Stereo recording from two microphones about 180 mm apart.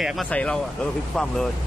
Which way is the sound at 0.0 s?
Centre (ahead or behind).